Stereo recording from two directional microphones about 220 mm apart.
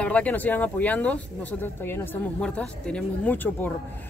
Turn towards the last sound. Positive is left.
turn(degrees=10)  # may be behind; listen again after turning